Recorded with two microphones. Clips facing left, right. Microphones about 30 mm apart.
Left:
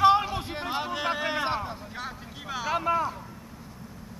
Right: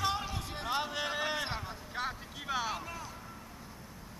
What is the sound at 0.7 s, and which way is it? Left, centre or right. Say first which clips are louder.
Vehicle: left 4 dB; centre.